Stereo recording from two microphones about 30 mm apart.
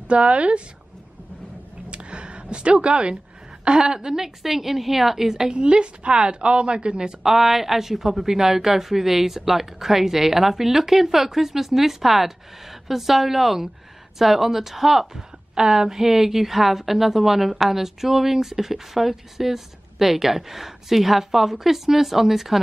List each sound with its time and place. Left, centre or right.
0.1 s a woman's voice: right
1.9 s a sound: right
2.8 s a woman's voice: right
4.0 s a woman's voice: centre
5.6 s a woman's voice: right
7.2 s a woman's voice: centre